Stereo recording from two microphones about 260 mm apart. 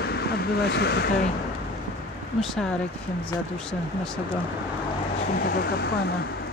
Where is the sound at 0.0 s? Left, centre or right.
Left.